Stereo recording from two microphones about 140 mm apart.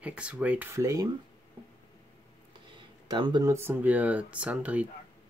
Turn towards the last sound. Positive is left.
turn(degrees=-10)  # may be behind; listen again after turning